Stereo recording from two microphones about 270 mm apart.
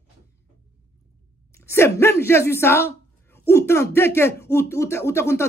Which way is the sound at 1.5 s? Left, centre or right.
Centre.